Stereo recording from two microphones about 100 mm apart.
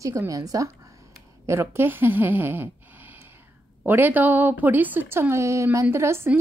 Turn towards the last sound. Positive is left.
turn(degrees=-25)  # may be behind; listen again after turning